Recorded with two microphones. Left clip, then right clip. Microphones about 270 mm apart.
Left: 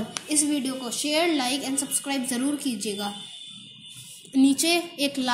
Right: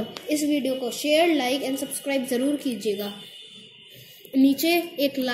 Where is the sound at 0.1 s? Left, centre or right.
Left.